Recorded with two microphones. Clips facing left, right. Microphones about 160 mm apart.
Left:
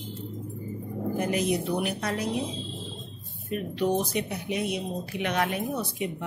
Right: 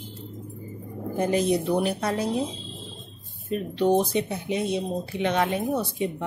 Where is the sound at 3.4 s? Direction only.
30° right (ahead or behind).